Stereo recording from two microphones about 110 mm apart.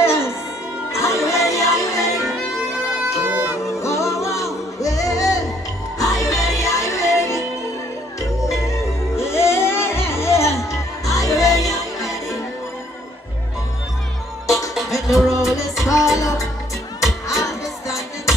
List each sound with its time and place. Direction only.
0.0 s music: 25° left (ahead or behind)
3.2 s music: 15° right (ahead or behind)
3.8 s music: 25° left (ahead or behind)
14.7 s music: centre (ahead or behind)
15.8 s music: 30° left (ahead or behind)